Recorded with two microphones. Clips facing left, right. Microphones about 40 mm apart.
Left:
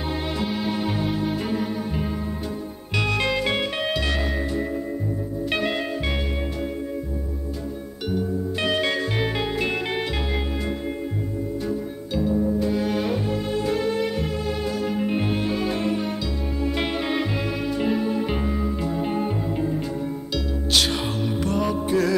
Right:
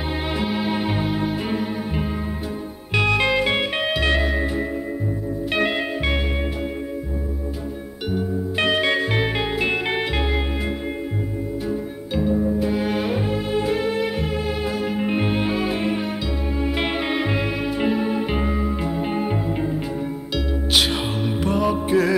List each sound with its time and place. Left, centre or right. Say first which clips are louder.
0.4 s music: right 3 dB; centre
5.7 s music: right 3 dB; right
8.1 s music: right 1 dB; right
12.2 s music: right 2 dB; right